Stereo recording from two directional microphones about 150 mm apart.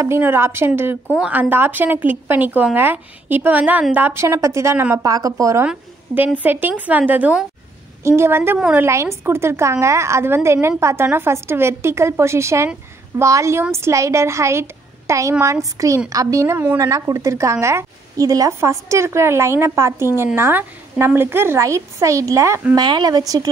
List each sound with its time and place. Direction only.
0.0 s a woman's voice: 15° right (ahead or behind)
5.7 s a woman's voice: 10° right (ahead or behind)
8.8 s a woman's voice: 15° right (ahead or behind)
22.8 s a woman's voice: 30° right (ahead or behind)